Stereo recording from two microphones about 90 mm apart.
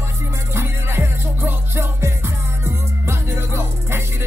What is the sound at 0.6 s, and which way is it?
Music, 25° right (ahead or behind).